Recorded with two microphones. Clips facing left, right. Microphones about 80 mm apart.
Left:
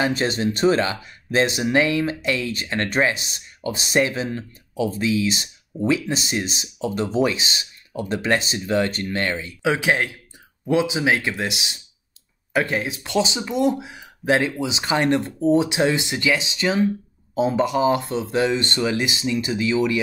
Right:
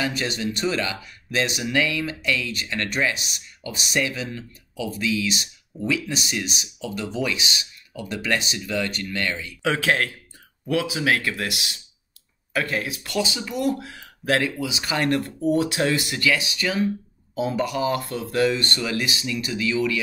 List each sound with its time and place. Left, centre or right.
0.0 s speech: left
9.6 s speech: centre